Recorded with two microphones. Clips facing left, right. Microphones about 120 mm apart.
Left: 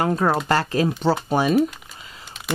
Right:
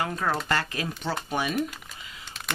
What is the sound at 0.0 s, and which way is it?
Speech, 40° left (ahead or behind).